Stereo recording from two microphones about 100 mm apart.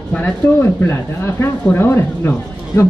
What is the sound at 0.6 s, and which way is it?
Speech, 25° left (ahead or behind).